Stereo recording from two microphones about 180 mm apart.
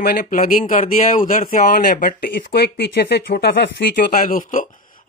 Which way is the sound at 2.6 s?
70° left (ahead or behind).